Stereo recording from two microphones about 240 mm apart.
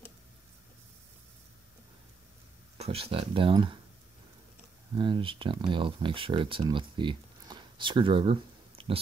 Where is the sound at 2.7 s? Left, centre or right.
Right.